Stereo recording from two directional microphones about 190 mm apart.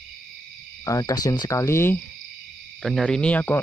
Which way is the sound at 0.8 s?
20° left (ahead or behind).